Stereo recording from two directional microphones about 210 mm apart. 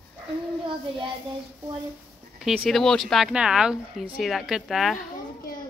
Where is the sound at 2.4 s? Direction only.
Centre (ahead or behind).